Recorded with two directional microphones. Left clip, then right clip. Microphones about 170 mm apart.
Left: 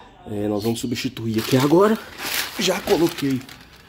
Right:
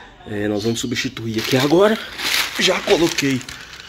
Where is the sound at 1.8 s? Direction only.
15° left (ahead or behind).